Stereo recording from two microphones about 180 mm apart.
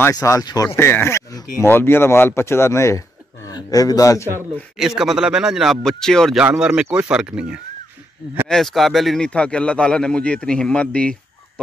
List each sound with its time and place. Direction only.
0.0 s a man's voice: 15° left (ahead or behind)
4.7 s speech: centre (ahead or behind)